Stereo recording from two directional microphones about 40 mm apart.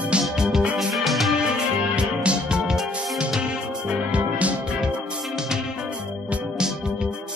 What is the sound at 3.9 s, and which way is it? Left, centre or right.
Music, right.